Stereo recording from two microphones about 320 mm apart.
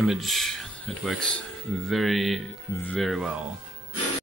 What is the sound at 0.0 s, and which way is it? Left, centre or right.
Speech, centre.